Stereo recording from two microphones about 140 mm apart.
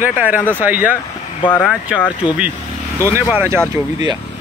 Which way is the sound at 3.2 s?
15° right (ahead or behind).